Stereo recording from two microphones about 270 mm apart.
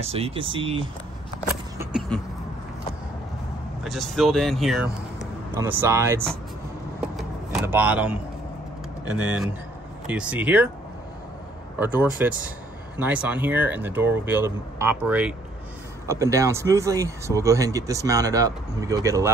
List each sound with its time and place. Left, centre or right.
0.0 s speech: right
1.8 s a sound: centre
3.8 s speech: centre
7.0 s vehicle: centre
9.0 s speech: centre
11.8 s speech: centre